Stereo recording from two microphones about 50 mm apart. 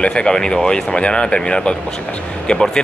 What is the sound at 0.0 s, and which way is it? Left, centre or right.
Speech, centre.